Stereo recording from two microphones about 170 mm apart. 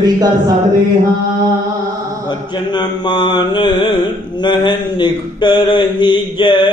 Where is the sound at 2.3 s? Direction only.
25° left (ahead or behind).